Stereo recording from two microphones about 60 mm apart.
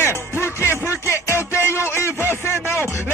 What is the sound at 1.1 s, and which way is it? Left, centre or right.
Music, left.